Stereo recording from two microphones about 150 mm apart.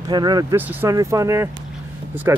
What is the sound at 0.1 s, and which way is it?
Speech, 25° right (ahead or behind).